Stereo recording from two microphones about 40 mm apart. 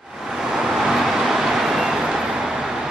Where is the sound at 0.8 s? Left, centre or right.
Centre.